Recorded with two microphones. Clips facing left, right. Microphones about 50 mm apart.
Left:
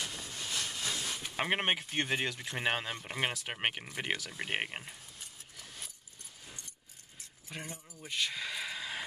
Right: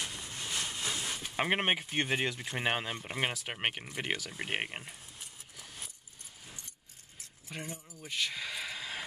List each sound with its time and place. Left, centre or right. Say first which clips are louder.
0.0 s vehicle: even; centre
1.3 s speech: right 2 dB; centre
5.6 s a sound: even; centre
7.4 s speech: right 2 dB; centre